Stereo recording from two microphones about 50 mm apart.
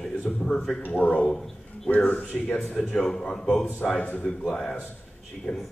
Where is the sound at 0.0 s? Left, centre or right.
Centre.